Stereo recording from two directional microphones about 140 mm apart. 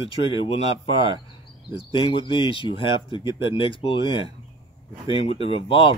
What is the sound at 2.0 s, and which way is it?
Speech, 35° left (ahead or behind).